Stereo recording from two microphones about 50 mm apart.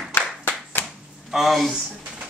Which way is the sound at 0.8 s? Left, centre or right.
Left.